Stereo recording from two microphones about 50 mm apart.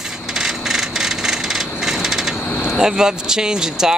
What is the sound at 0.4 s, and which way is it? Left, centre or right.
Vehicle, centre.